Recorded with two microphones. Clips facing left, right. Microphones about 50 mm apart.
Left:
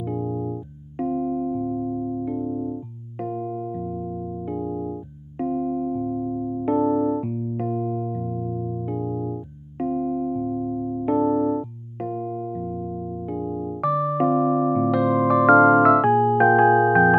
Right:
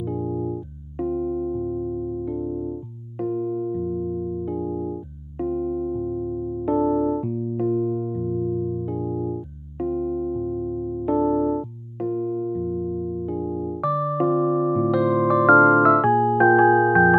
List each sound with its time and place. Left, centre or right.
0.0 s keyboard: centre
1.1 s music: centre
2.4 s music: centre
3.2 s electric piano: centre
6.8 s electric piano: centre
7.2 s music: left; by 11.6 s centre
12.0 s music: centre